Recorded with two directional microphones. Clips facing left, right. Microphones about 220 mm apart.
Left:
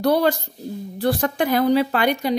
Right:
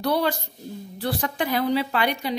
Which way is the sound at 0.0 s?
45° left (ahead or behind).